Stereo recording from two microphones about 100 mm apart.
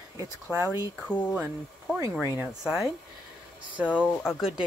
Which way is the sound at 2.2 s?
25° right (ahead or behind).